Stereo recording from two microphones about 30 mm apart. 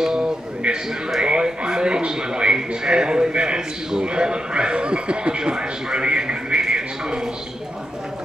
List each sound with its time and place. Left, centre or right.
0.0 s a sound: right
1.2 s a man's voice: right
6.6 s music: right